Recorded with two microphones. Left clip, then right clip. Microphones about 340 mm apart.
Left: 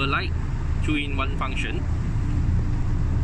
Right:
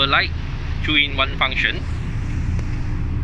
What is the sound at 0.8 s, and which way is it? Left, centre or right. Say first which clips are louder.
Speech: right 10 dB; right.